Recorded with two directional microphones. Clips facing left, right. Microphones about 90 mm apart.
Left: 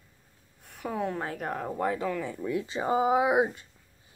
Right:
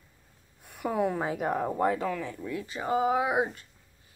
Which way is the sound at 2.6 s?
25° left (ahead or behind).